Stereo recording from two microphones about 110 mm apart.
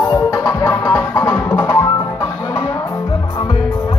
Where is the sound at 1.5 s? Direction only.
30° left (ahead or behind).